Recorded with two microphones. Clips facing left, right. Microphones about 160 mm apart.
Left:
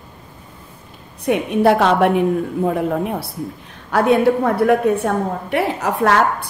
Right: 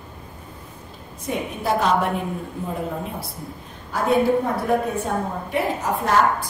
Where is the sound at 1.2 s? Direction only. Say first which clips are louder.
Left 11 dB; 70° left (ahead or behind).